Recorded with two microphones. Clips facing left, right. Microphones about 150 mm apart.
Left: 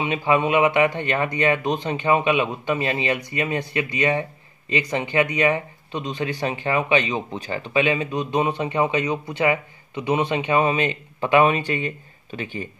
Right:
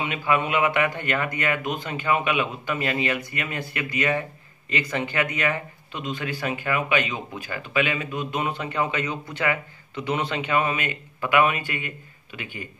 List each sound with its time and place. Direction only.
0.0 s a man's voice: 25° left (ahead or behind)